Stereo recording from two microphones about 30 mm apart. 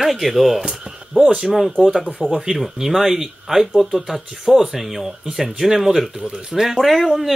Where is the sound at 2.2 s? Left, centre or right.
Centre.